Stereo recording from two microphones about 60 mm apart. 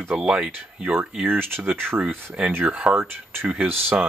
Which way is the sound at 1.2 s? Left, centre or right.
Right.